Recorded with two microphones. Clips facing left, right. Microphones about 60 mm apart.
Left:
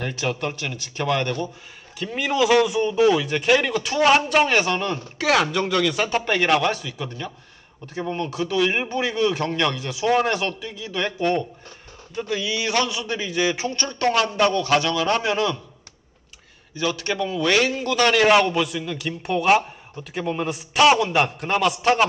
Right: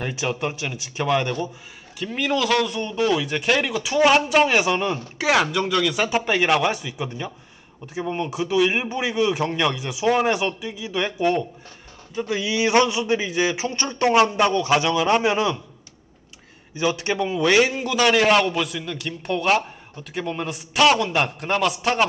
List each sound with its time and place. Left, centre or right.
0.0 s a man's voice: centre
2.0 s a man's voice: centre; by 15.5 s right
16.7 s speech: right
18.4 s a man's voice: centre